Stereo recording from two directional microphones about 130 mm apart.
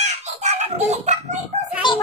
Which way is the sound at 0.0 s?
60° right (ahead or behind).